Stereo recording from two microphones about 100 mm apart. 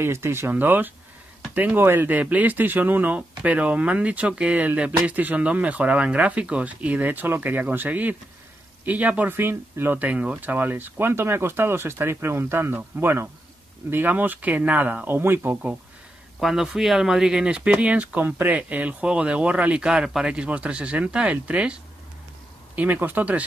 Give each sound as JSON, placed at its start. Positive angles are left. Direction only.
{"t": 0.0, "sound": "speech", "side_deg": -25}
{"t": 16.3, "sound": "speech", "side_deg": 0}
{"t": 22.8, "sound": "speech", "side_deg": -20}